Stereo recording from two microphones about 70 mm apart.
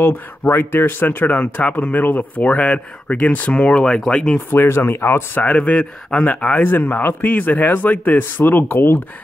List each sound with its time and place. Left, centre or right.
0.0 s speech: left; by 4.4 s centre
4.5 s speech: left
5.4 s speech: centre